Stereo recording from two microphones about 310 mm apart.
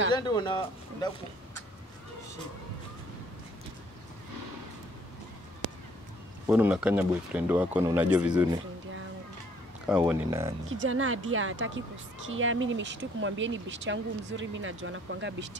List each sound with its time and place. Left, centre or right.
0.1 s speech: centre
6.4 s speech: centre
9.8 s speech: centre
10.7 s speech: right